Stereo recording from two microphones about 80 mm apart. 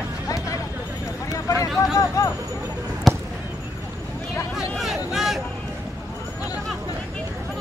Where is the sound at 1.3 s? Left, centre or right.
Left.